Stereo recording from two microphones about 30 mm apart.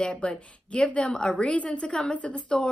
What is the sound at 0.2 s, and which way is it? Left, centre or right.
Speech, left.